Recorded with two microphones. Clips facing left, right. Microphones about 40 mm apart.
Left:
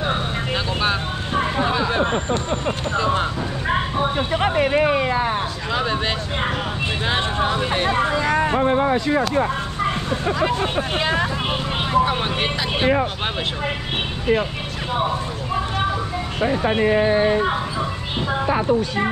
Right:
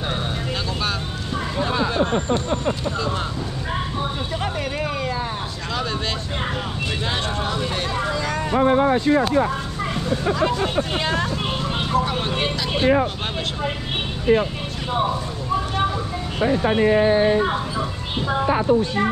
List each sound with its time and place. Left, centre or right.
0.8 s a sound: left
1.9 s speech: left
7.1 s speech: left
11.9 s speech: left